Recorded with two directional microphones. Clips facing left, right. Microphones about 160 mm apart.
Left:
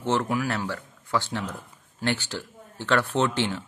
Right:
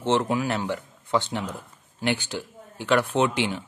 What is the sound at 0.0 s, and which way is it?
Speech, 20° right (ahead or behind).